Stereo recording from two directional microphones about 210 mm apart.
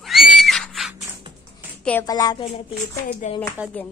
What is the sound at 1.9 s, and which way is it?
Speech, 15° left (ahead or behind).